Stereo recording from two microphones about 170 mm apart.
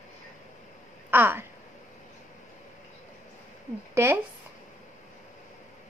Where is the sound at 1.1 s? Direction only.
10° right (ahead or behind).